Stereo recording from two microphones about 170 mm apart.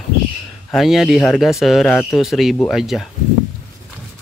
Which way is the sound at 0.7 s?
Centre (ahead or behind).